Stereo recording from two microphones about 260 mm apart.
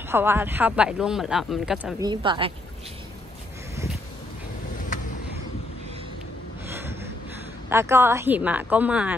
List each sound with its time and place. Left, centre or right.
0.1 s speech: centre
2.0 s speech: centre
7.7 s speech: centre